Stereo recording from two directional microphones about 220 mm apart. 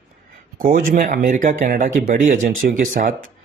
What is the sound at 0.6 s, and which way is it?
Speech, 40° right (ahead or behind).